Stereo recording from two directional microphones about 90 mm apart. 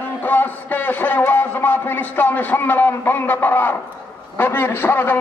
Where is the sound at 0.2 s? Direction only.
20° left (ahead or behind).